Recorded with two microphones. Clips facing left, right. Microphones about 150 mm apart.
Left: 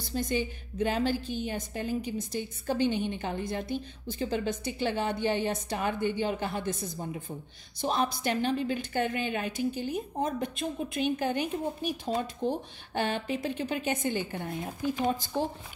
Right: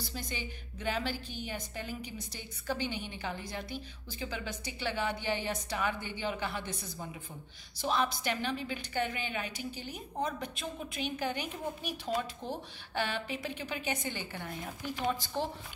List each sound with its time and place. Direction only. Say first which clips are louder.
0.0 s a woman's voice: left 10 dB; 50° left (ahead or behind)
12.9 s a woman's voice: left 5 dB; 45° left (ahead or behind)
14.5 s speech: left 9 dB; 25° left (ahead or behind)
15.0 s a woman's voice: even; 45° left (ahead or behind)